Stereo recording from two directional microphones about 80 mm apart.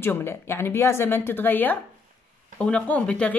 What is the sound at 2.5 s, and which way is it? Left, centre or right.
Speech, centre.